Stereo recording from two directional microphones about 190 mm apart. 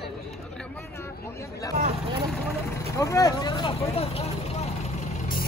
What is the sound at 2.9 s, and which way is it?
Vehicle, 15° left (ahead or behind).